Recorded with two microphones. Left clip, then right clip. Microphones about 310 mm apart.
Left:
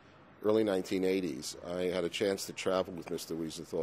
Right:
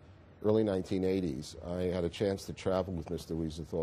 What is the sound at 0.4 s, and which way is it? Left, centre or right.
Speech, right.